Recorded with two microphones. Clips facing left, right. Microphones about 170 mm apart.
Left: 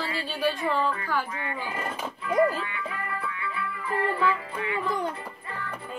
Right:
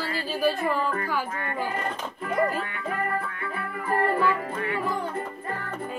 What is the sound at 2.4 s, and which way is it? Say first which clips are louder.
Music: left 2 dB; 50° right (ahead or behind).